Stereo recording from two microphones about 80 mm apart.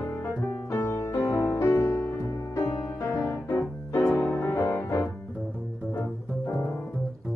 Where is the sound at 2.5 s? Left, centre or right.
Left.